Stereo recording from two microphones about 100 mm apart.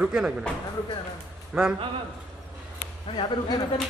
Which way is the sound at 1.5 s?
10° right (ahead or behind).